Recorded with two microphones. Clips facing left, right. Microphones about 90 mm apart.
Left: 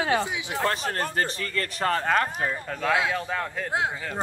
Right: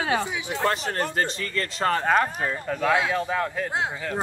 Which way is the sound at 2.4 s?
Centre (ahead or behind).